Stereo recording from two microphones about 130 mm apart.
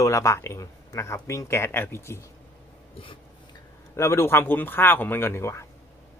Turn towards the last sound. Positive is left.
turn(degrees=20)  # may be behind; listen again after turning